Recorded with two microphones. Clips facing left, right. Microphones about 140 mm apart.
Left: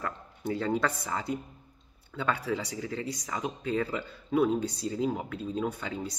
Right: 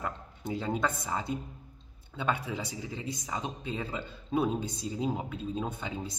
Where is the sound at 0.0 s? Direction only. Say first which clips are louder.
Left 2 dB; 20° right (ahead or behind).